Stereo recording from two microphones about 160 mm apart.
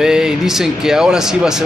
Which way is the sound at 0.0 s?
5° right (ahead or behind).